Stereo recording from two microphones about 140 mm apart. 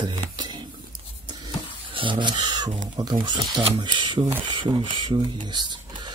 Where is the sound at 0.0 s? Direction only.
30° right (ahead or behind).